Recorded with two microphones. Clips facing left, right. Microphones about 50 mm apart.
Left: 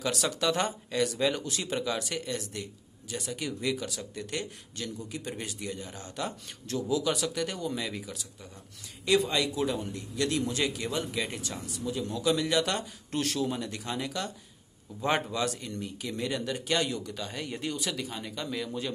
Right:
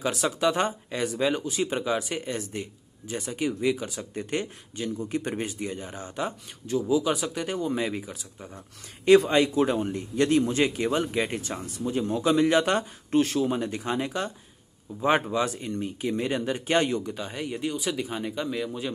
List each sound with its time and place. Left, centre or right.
0.0 s speech: right
4.7 s speech: right
5.0 s speech: right
9.0 s speech: right
17.1 s speech: centre
17.4 s speech: centre